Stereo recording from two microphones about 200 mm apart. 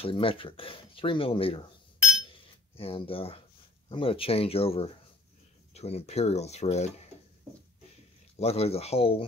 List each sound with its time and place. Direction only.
0.0 s speech: 25° left (ahead or behind)
2.8 s speech: 30° left (ahead or behind)
8.4 s speech: 30° left (ahead or behind)